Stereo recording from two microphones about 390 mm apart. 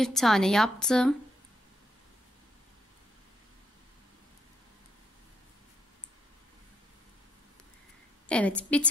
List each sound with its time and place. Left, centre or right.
0.0 s a woman's voice: centre
8.3 s a woman's voice: centre